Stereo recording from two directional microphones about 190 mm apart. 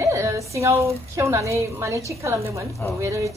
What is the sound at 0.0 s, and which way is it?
A woman's voice, 15° right (ahead or behind).